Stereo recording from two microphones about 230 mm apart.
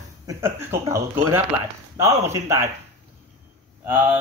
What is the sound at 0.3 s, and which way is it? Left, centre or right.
Speech, centre.